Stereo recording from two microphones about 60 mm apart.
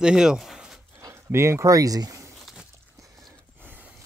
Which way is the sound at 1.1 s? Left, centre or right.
Right.